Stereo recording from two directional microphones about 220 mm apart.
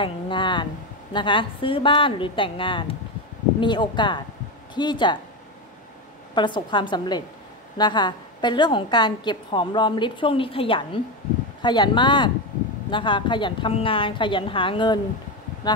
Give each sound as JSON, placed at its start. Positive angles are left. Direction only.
{"t": 0.0, "sound": "a woman's voice", "side_deg": 20}
{"t": 6.3, "sound": "a woman's voice", "side_deg": 20}